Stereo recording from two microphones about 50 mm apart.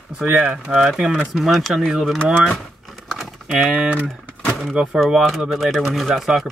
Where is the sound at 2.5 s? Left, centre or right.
Centre.